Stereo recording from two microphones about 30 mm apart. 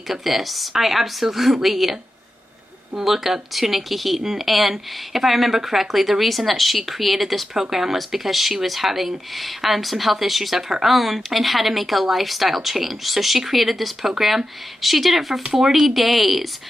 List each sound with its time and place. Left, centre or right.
0.1 s a woman's voice: centre
3.0 s speech: centre
4.2 s a woman's voice: centre